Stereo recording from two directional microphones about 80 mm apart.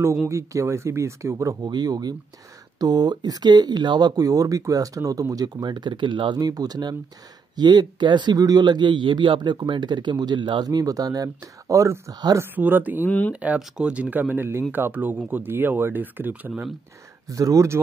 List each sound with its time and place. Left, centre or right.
0.3 s speech: right
1.7 s speech: right
6.3 s speech: right
8.4 s a man's voice: right
12.5 s speech: right
13.0 s speech: centre
13.3 s speech: centre
17.3 s speech: right